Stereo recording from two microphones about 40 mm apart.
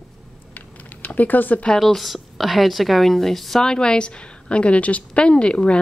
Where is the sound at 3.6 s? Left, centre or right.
Left.